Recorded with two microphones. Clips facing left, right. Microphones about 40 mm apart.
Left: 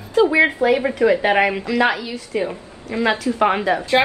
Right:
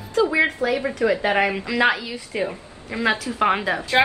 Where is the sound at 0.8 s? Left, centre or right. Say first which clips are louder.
Left 4 dB; centre.